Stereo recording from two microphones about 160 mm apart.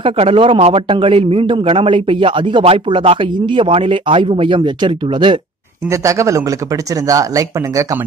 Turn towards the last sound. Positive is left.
turn(degrees=-20)  # may be behind; listen again after turning